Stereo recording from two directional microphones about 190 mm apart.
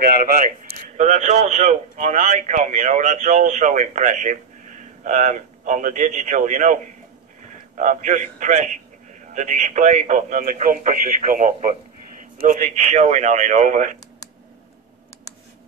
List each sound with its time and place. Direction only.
0.9 s a man's voice: 40° right (ahead or behind)
12.6 s a man's voice: 35° right (ahead or behind)